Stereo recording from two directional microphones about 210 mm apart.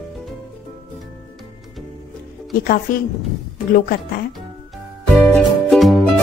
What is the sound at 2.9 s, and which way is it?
A woman's voice, 40° left (ahead or behind).